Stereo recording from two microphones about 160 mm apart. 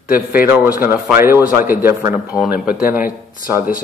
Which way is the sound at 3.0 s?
60° left (ahead or behind).